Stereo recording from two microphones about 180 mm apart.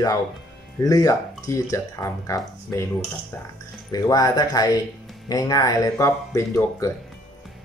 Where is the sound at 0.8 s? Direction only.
20° left (ahead or behind).